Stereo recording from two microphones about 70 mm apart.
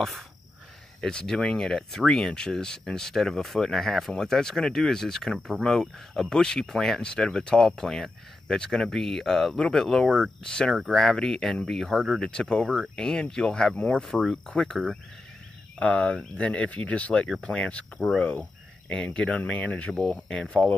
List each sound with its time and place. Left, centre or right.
1.0 s speech: centre
12.2 s speech: centre
15.8 s speech: centre
18.3 s cricket: left
18.9 s speech: centre